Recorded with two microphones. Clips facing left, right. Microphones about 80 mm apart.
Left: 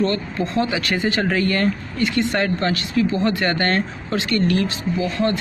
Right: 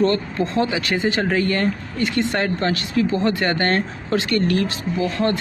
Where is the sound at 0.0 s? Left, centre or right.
Right.